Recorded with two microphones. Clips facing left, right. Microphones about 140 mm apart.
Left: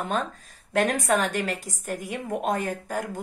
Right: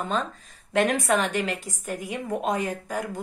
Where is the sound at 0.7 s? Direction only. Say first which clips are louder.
Right 1 dB; 40° left (ahead or behind).